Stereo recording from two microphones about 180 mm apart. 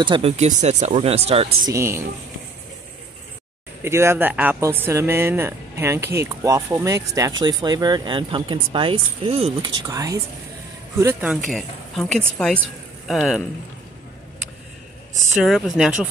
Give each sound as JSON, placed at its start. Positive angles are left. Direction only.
{"t": 0.0, "sound": "speech", "side_deg": -30}
{"t": 1.7, "sound": "speech", "side_deg": -15}
{"t": 3.8, "sound": "speech", "side_deg": -15}
{"t": 11.4, "sound": "speech", "side_deg": 0}
{"t": 15.3, "sound": "speech", "side_deg": 0}